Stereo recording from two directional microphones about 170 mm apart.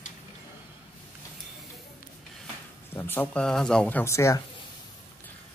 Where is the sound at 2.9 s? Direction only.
10° left (ahead or behind).